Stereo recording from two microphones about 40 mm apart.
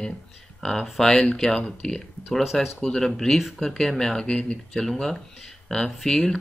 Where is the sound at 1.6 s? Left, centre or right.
Left.